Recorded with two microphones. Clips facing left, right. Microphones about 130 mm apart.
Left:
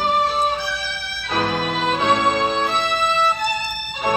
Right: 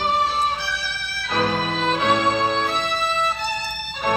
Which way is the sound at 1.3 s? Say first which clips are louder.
Left 1 dB; 5° left (ahead or behind).